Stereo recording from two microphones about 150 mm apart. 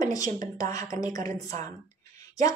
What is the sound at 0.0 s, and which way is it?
A woman's voice, 25° left (ahead or behind).